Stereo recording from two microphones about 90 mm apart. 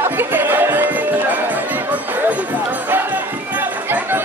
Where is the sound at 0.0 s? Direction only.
25° right (ahead or behind).